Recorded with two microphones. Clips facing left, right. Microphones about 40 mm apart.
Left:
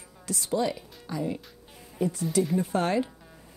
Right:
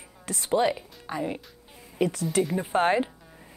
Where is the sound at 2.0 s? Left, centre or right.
Right.